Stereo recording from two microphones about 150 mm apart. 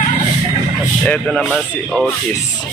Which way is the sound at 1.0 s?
5° left (ahead or behind).